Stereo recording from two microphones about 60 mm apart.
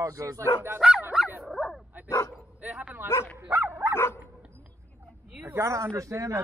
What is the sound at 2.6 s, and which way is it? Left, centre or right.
Dog, right.